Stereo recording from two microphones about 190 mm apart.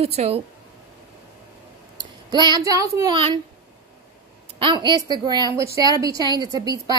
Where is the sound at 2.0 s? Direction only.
25° right (ahead or behind).